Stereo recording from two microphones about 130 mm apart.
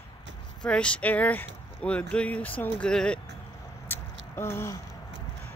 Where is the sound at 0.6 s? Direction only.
10° left (ahead or behind).